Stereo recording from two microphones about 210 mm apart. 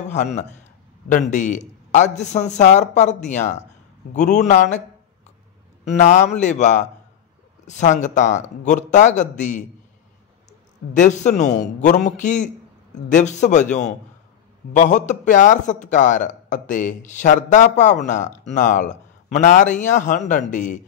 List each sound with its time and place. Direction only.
0.1 s a man's voice: 35° left (ahead or behind)
5.9 s a man's voice: 35° left (ahead or behind)
10.9 s a man's voice: 35° left (ahead or behind)